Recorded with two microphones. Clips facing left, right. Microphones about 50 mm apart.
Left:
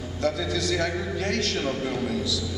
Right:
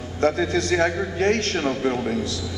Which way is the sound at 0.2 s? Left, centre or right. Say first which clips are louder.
Right 6 dB; right.